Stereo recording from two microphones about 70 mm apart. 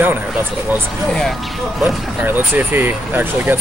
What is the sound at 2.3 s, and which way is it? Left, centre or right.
Speech, right.